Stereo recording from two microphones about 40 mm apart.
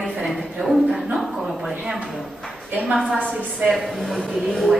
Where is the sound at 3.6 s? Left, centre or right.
Centre.